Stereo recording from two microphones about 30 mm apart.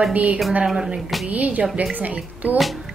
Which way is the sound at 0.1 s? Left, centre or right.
Right.